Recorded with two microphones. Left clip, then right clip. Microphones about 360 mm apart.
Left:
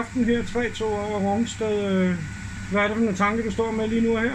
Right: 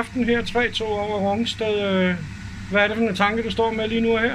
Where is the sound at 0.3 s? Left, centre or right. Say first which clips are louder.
Right 6 dB; right.